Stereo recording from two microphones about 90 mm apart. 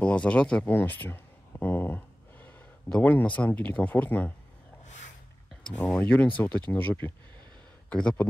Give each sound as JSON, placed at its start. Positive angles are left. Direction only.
{"t": 0.0, "sound": "speech", "side_deg": 15}
{"t": 0.7, "sound": "a sound", "side_deg": 25}
{"t": 2.9, "sound": "speech", "side_deg": 15}
{"t": 5.7, "sound": "speech", "side_deg": 10}
{"t": 5.9, "sound": "speech", "side_deg": 20}
{"t": 7.9, "sound": "speech", "side_deg": 10}